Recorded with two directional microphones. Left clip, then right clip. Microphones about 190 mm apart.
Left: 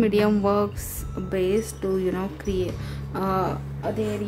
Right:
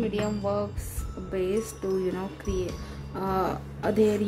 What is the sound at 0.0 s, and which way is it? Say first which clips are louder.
Music: left 8 dB; 30° left (ahead or behind).